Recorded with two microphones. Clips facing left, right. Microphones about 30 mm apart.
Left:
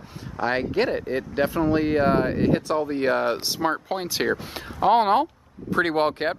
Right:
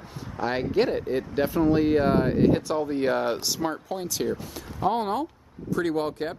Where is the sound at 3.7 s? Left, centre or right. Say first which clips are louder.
Left 4 dB; left.